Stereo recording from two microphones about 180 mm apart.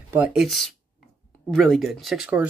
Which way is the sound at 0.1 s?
5° right (ahead or behind).